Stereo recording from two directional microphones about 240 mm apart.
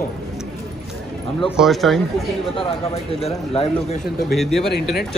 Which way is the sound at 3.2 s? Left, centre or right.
Left.